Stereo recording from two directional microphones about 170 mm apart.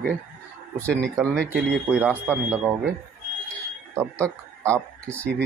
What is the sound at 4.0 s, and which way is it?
Speech, 15° right (ahead or behind).